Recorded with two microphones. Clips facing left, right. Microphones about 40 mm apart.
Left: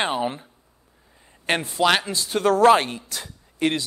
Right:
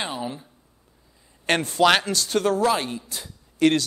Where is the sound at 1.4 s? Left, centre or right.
Centre.